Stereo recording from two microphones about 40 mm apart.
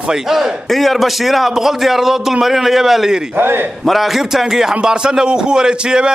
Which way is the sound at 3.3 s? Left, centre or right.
Right.